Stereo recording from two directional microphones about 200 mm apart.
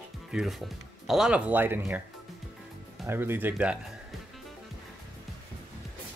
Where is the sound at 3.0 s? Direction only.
10° right (ahead or behind).